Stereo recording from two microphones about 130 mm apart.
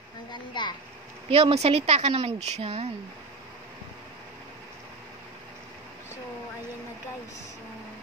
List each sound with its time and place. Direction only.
0.3 s a woman's voice: 35° left (ahead or behind)
1.3 s a woman's voice: 50° right (ahead or behind)